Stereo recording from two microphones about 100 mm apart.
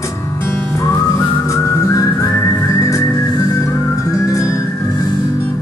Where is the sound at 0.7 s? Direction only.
30° left (ahead or behind).